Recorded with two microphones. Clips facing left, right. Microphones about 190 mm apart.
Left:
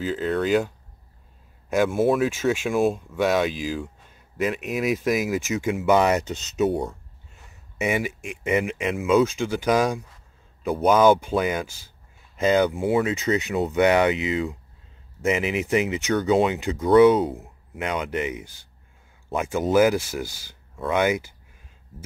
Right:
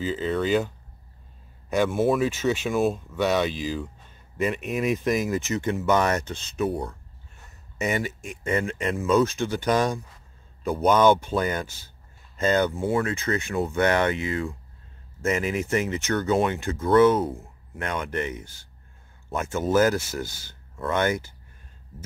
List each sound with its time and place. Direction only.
0.0 s speech: centre (ahead or behind); by 7.0 s 20° left (ahead or behind)
7.4 s speech: 10° left (ahead or behind)